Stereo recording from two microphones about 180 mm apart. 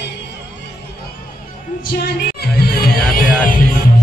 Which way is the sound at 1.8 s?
55° left (ahead or behind).